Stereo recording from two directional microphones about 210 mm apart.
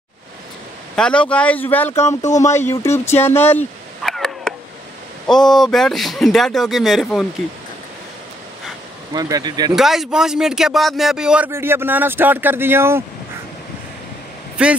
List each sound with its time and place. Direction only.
0.9 s speech: 5° left (ahead or behind)
9.1 s speech: 20° right (ahead or behind)
9.8 s speech: centre (ahead or behind)
14.6 s speech: 5° right (ahead or behind)